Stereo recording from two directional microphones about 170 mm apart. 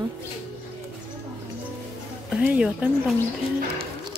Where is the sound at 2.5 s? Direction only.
10° right (ahead or behind).